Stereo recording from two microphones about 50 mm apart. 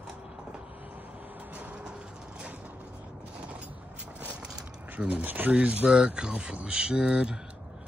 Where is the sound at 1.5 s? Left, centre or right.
Right.